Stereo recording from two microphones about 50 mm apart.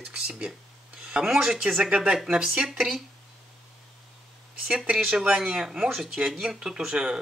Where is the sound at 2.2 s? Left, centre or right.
Centre.